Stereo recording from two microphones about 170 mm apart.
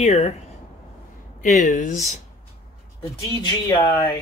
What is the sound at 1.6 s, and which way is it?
Speech, 50° left (ahead or behind).